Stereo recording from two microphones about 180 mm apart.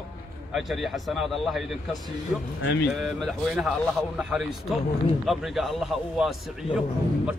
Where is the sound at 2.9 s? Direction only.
Centre (ahead or behind).